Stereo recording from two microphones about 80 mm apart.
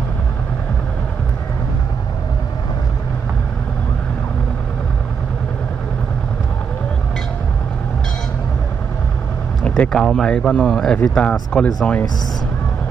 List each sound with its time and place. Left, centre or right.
9.7 s speech: centre